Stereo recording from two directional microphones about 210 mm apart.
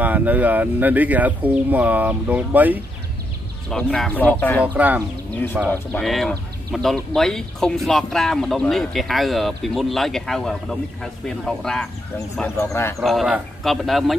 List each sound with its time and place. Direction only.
0.0 s speech: 10° right (ahead or behind)
3.7 s speech: 5° left (ahead or behind)
4.7 s speech: 10° right (ahead or behind)
5.7 s speech: 5° left (ahead or behind)
13.0 s speech: centre (ahead or behind)